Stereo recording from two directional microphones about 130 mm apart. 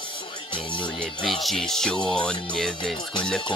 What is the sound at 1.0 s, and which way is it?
Speech, 5° left (ahead or behind).